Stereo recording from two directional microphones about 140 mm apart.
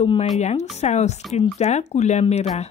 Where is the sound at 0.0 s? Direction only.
45° left (ahead or behind).